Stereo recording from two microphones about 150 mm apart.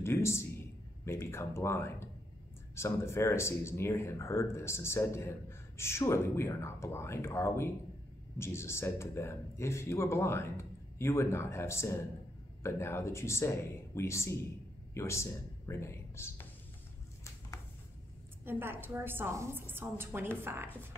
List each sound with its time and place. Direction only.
0.0 s speech: 20° left (ahead or behind)
18.4 s a woman's voice: 15° right (ahead or behind)